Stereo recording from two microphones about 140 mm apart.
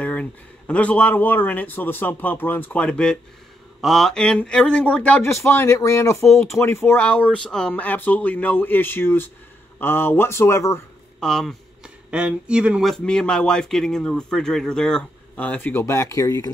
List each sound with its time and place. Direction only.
0.0 s a man's voice: 10° left (ahead or behind)
11.1 s speech: 5° left (ahead or behind); by 16.4 s 25° left (ahead or behind)